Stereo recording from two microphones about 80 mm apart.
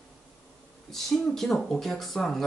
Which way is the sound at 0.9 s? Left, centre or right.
Centre.